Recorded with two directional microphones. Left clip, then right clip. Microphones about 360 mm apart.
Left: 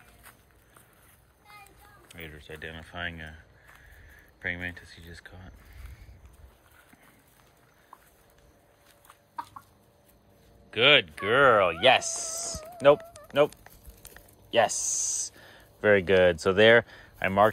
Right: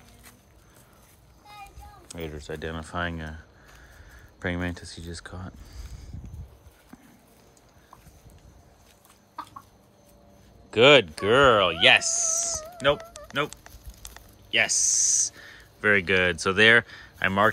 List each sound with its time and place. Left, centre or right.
2.0 s speech: centre
2.5 s speech: right
4.4 s speech: right
10.7 s speech: centre
14.6 s speech: centre